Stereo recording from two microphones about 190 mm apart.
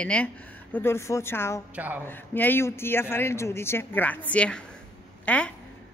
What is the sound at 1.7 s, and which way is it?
Speech, 10° right (ahead or behind).